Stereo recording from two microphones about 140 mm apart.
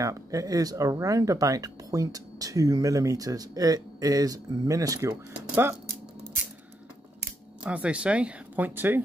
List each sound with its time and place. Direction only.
0.0 s speech: 25° right (ahead or behind)
7.6 s speech: 10° right (ahead or behind)